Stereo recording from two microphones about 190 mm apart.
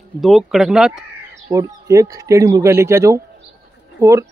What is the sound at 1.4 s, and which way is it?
Speech, 15° right (ahead or behind).